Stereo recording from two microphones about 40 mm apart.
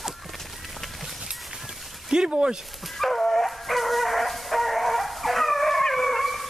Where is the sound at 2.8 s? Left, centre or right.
Centre.